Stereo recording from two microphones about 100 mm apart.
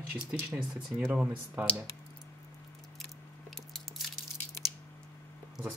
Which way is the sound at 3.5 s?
5° left (ahead or behind).